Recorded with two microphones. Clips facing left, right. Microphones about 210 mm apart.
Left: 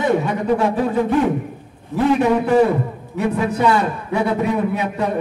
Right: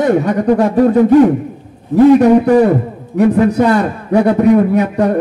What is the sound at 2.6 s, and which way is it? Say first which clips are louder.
A man's voice: right 6 dB; 55° right (ahead or behind).